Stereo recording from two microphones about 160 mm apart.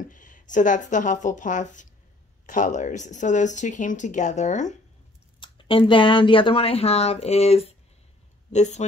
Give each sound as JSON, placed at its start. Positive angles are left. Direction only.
{"t": 0.1, "sound": "speech", "side_deg": 55}
{"t": 5.4, "sound": "speech", "side_deg": 30}